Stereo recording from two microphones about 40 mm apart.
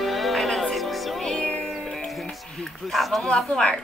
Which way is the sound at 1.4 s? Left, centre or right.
Left.